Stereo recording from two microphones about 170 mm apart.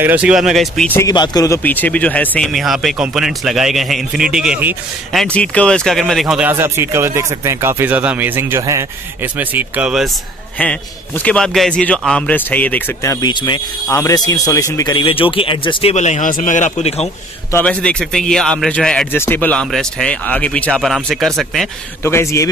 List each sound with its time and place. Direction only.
0.0 s speech: 10° right (ahead or behind)
0.9 s speech: 25° left (ahead or behind); by 4.7 s 5° right (ahead or behind)
5.1 s speech: 5° left (ahead or behind)
10.6 s a man's voice: 10° left (ahead or behind); by 17.1 s 40° left (ahead or behind)
17.5 s speech: 10° left (ahead or behind)
22.0 s a man's voice: 15° left (ahead or behind)